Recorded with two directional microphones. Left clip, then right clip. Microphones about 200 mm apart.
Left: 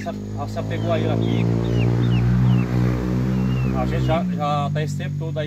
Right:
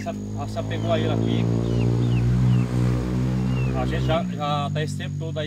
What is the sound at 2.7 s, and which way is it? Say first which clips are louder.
Vehicle: left 3 dB; 40° left (ahead or behind).